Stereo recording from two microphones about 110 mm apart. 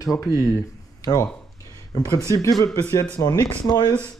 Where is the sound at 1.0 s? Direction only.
30° left (ahead or behind).